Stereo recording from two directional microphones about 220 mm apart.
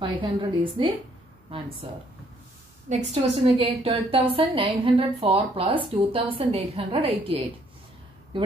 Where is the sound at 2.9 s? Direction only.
35° right (ahead or behind).